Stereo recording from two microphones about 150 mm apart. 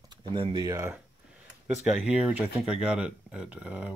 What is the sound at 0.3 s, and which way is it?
Speech, 30° right (ahead or behind).